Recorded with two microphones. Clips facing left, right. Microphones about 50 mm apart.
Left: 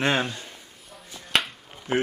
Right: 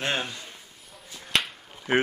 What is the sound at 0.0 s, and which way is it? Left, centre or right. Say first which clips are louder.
Speech: left 5 dB; left.